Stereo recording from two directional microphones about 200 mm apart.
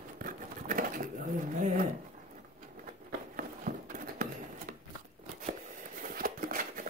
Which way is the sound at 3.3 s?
45° right (ahead or behind).